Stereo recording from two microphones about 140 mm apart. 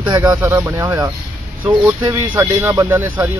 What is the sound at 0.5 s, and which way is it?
Speech, 15° right (ahead or behind).